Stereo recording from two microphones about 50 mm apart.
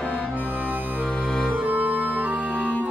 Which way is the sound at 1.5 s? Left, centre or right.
Right.